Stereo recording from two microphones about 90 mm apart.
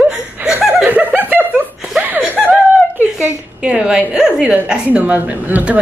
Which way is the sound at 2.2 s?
15° right (ahead or behind).